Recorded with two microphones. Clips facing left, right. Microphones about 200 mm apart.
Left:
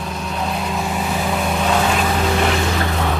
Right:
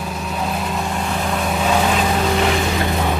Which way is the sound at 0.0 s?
5° right (ahead or behind).